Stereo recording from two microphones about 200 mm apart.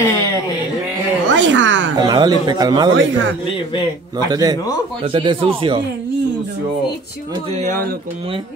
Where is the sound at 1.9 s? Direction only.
20° right (ahead or behind).